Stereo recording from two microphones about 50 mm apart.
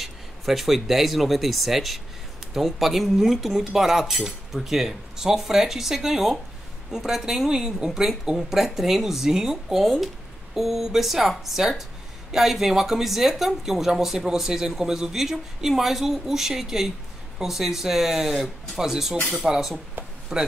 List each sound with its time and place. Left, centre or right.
0.0 s speech: centre
9.8 s speech: centre
20.0 s a sound: right